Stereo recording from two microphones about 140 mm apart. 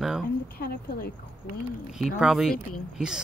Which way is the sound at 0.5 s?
90° left.